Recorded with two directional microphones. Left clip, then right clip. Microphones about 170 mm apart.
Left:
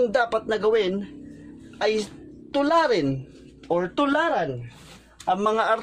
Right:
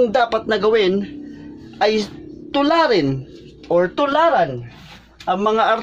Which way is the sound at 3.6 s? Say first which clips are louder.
Right 6 dB; 55° left (ahead or behind).